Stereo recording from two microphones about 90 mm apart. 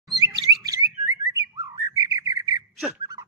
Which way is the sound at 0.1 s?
45° right (ahead or behind).